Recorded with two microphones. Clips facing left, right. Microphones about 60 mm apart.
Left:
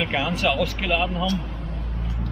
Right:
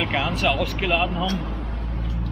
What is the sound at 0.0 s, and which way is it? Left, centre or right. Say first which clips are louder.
Speech: even; centre.